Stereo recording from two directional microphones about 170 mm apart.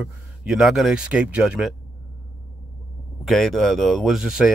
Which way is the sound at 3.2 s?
Centre (ahead or behind).